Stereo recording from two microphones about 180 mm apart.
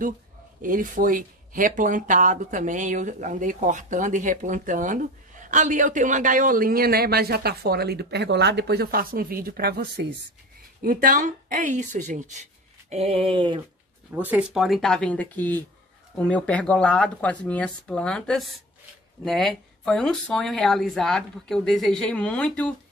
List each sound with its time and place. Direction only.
0.6 s speech: 50° right (ahead or behind); by 10.0 s 65° right (ahead or behind)
10.8 s speech: 55° right (ahead or behind)
12.9 s a sound: 35° right (ahead or behind)
14.1 s speech: 10° right (ahead or behind)